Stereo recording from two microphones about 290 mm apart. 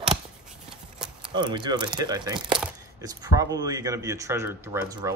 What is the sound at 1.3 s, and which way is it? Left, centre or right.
Speech, centre.